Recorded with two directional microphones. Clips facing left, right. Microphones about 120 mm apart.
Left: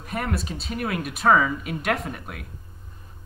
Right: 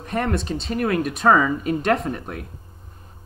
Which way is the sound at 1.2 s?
30° right (ahead or behind).